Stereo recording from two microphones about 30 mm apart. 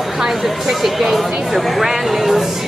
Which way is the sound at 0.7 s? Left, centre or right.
Centre.